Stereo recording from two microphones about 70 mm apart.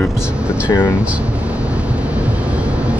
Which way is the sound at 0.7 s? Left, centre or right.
Left.